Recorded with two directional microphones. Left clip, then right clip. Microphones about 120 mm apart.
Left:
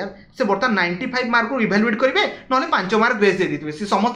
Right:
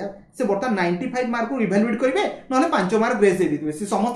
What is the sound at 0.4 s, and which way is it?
Speech, 45° right (ahead or behind).